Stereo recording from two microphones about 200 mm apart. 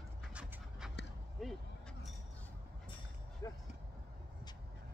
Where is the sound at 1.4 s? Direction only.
Centre (ahead or behind).